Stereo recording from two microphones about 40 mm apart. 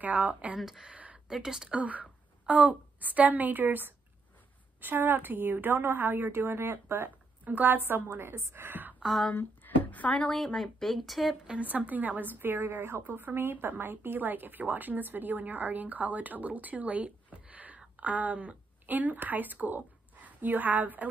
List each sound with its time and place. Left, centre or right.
0.0 s speech: right
0.6 s speech: centre
0.9 s a sound: right
1.3 s speech: centre
1.8 s a woman's voice: right
6.1 s speech: right
7.4 s a woman's voice: right
9.3 s a sound: left
10.2 s speech: centre
11.6 s a woman's voice: right
13.0 s a woman's voice: right